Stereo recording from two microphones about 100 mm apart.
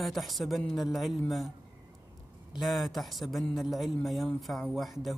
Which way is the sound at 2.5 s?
Centre (ahead or behind).